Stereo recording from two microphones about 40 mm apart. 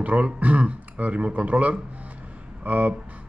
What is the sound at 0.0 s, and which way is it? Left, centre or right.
Speech, right.